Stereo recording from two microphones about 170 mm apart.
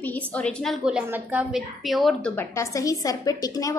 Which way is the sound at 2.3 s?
15° left (ahead or behind).